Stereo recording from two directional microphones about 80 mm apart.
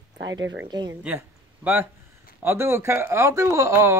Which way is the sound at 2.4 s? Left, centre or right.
Right.